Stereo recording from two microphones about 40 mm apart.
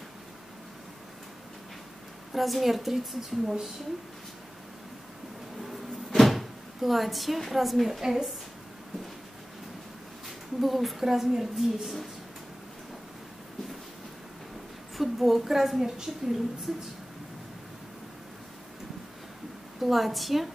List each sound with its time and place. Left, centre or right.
2.3 s a woman's voice: centre
5.6 s cupboard open or close: centre
8.0 s a woman's voice: centre
10.6 s a woman's voice: centre
15.0 s a woman's voice: centre
19.8 s a woman's voice: centre